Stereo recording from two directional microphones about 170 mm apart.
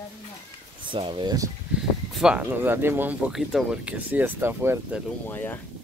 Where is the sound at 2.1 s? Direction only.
5° right (ahead or behind).